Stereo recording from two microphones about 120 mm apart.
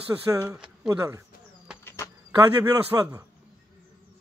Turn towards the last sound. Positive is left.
turn(degrees=-35)  # may be behind; listen again after turning